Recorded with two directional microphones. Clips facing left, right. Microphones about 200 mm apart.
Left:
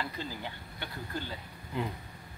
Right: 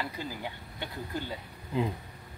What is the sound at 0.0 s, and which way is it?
Speech, 10° right (ahead or behind).